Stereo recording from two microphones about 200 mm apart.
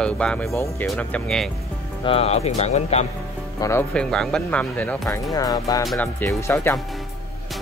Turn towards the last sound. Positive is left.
turn(degrees=15)  # may be behind; listen again after turning